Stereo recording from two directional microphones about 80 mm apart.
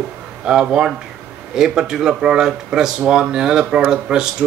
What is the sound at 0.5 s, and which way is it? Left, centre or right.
Speech, centre.